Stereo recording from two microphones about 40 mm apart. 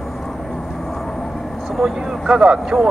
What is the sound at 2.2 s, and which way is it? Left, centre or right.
Speech, centre.